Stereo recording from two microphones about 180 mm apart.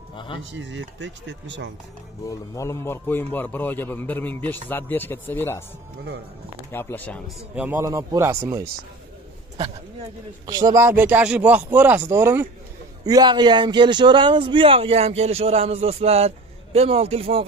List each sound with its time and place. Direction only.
0.1 s speech: 30° left (ahead or behind)
0.4 s speech: 90° right
2.2 s a man's voice: 15° left (ahead or behind)
6.7 s a man's voice: 10° left (ahead or behind)
7.5 s speech: 5° right (ahead or behind)
7.8 s speech: 20° right (ahead or behind)
10.4 s a man's voice: 20° right (ahead or behind)